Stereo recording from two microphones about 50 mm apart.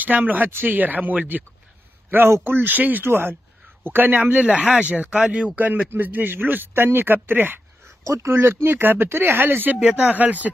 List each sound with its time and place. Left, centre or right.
0.0 s speech: right
4.3 s speech: right
7.8 s speech: right
9.8 s speech: right